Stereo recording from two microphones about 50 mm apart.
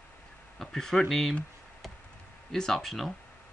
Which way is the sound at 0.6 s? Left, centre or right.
Centre.